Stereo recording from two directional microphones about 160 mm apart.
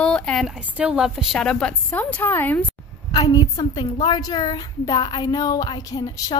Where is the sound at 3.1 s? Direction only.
25° left (ahead or behind).